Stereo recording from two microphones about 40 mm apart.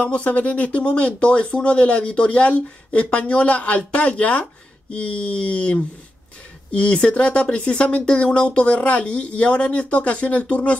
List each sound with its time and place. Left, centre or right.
0.0 s speech: left